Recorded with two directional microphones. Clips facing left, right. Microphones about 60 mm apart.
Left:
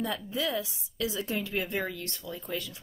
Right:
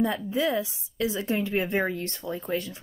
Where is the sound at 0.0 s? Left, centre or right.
Right.